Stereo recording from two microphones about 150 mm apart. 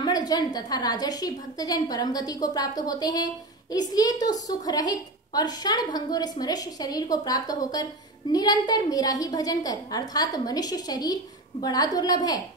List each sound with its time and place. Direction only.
0.0 s a woman's voice: 25° left (ahead or behind)